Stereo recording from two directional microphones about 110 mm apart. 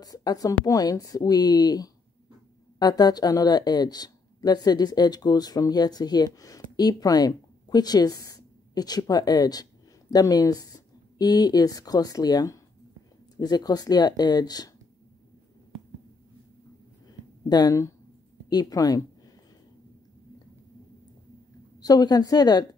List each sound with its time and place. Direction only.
0.0 s speech: 35° left (ahead or behind)
17.5 s speech: 35° left (ahead or behind)
21.7 s speech: 35° left (ahead or behind)